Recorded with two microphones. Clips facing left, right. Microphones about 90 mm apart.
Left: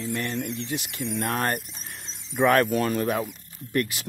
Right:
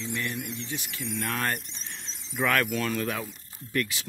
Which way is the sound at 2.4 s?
35° left (ahead or behind).